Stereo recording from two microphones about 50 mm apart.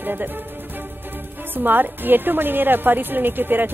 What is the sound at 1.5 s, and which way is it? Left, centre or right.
A woman's voice, right.